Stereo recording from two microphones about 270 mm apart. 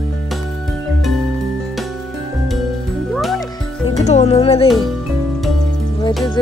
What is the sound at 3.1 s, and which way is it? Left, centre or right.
Music, centre.